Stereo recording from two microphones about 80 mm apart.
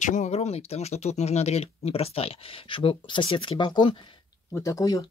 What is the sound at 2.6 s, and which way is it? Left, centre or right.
Speech, left.